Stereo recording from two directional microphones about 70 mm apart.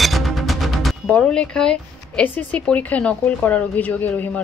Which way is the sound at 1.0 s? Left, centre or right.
Centre.